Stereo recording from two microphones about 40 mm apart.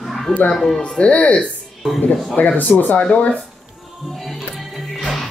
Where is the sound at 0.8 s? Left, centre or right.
Left.